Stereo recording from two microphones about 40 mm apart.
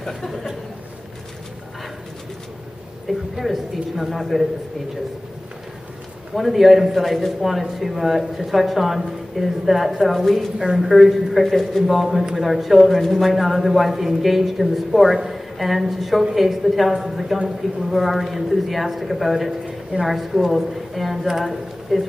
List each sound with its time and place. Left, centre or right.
3.1 s a man's voice: centre
6.3 s a man's voice: centre